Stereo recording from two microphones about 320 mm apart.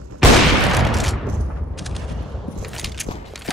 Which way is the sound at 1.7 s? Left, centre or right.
Centre.